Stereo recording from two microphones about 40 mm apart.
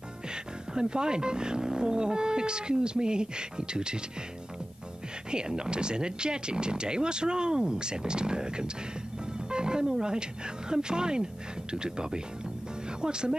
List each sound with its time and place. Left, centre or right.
0.3 s speech: right
5.3 s speech: centre